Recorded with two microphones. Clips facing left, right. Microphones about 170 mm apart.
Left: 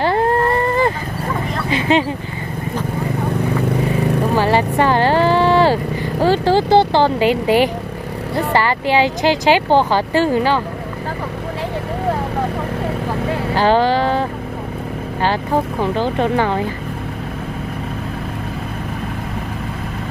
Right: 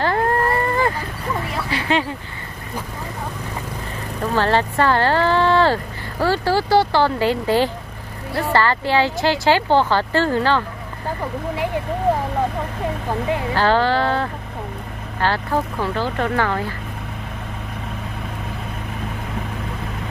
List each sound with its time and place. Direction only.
1.7 s speech: 20° left (ahead or behind)
3.8 s vehicle: 65° left (ahead or behind)
4.4 s speech: 10° left (ahead or behind)
13.6 s speech: 15° left (ahead or behind)
15.2 s speech: 20° left (ahead or behind)